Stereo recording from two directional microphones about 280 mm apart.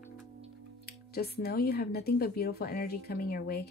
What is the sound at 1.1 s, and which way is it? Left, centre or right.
Speech, left.